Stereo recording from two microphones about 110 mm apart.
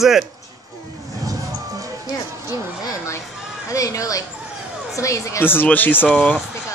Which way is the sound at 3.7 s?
30° left (ahead or behind).